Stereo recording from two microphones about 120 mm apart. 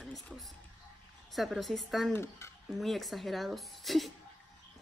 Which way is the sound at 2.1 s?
20° left (ahead or behind).